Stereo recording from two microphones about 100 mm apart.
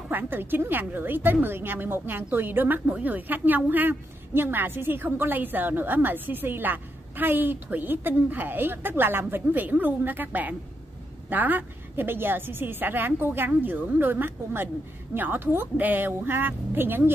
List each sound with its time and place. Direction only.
0.1 s a woman's voice: 20° right (ahead or behind)